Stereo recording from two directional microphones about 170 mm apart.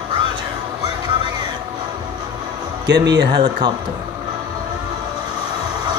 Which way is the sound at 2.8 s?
90° right.